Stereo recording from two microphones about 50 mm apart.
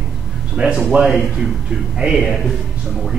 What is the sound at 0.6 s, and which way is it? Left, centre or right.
Speech, centre.